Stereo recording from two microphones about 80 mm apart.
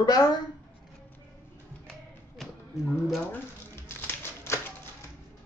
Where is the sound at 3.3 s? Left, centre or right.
Left.